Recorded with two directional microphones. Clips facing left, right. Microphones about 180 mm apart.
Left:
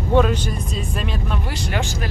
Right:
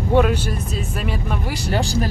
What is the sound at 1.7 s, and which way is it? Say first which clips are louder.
Speech: right 6 dB; 35° right (ahead or behind).